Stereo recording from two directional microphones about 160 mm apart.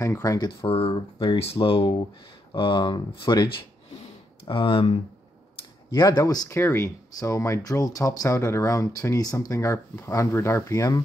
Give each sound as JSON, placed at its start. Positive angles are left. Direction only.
{"t": 0.0, "sound": "speech", "side_deg": 20}
{"t": 0.7, "sound": "speech", "side_deg": 35}
{"t": 5.9, "sound": "speech", "side_deg": 20}